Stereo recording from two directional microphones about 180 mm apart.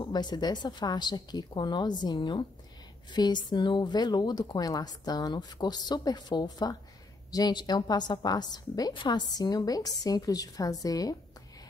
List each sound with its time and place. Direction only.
0.0 s a woman's voice: 25° left (ahead or behind)